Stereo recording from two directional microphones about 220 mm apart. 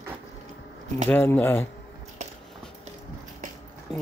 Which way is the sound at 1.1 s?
10° left (ahead or behind).